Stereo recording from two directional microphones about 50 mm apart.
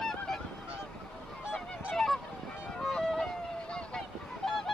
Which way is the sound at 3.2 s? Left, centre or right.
Centre.